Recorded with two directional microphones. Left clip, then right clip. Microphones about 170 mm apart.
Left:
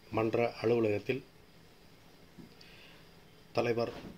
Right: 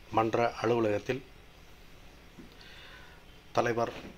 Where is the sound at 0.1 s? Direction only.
Centre (ahead or behind).